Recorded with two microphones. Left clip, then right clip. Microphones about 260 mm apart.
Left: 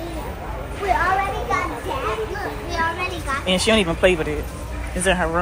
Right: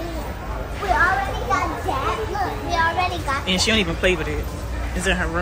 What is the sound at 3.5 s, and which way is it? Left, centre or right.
A woman's voice, centre.